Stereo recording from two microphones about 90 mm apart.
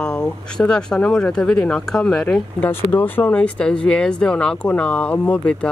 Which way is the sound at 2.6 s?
20° left (ahead or behind).